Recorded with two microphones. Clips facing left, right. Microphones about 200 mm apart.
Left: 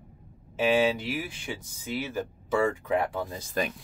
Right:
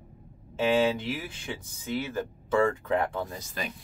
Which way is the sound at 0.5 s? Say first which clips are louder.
Even; 10° left (ahead or behind).